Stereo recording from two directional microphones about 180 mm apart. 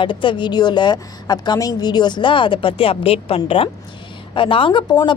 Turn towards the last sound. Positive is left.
turn(degrees=25)  # may be behind; listen again after turning